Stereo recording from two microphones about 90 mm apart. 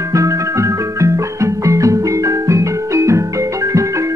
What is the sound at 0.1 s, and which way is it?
Music, 35° right (ahead or behind).